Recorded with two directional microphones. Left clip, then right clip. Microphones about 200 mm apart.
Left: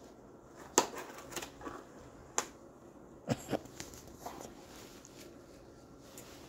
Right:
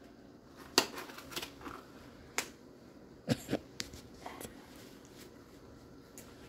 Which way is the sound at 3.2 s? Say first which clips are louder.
Right 1 dB; 20° right (ahead or behind).